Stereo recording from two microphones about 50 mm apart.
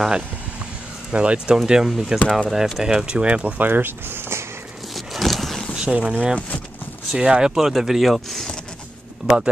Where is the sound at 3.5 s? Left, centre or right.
Right.